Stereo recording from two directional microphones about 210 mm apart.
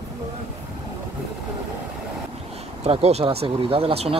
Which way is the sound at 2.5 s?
30° right (ahead or behind).